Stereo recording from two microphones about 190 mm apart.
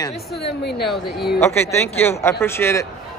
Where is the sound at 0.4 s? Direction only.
60° left (ahead or behind).